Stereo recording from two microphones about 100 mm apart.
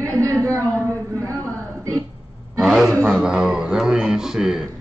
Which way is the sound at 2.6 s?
5° right (ahead or behind).